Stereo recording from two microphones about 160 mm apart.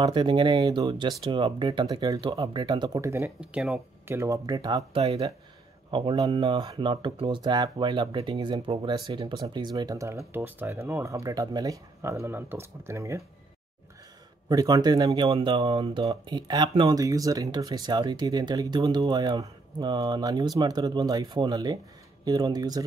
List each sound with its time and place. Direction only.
0.0 s speech: 30° right (ahead or behind)
3.3 s speech: 5° right (ahead or behind)
4.1 s speech: 20° right (ahead or behind)
14.5 s speech: 25° right (ahead or behind)